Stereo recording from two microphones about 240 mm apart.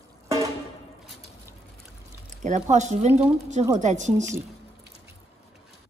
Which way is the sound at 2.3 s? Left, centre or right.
Right.